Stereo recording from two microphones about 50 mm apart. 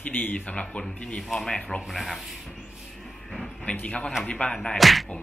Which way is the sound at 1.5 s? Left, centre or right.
Left.